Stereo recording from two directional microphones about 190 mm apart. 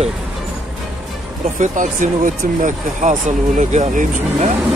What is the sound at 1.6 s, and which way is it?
Speech, 40° right (ahead or behind).